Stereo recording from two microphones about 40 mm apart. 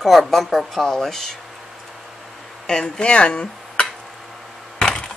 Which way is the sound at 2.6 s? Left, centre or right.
Centre.